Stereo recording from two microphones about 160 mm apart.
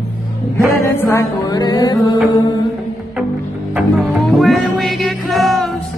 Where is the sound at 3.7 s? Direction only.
Centre (ahead or behind).